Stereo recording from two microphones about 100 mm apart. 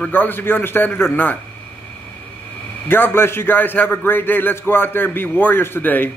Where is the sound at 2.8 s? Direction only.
20° left (ahead or behind).